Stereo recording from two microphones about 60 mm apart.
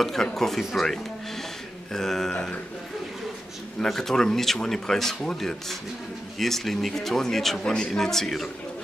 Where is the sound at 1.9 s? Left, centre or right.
Centre.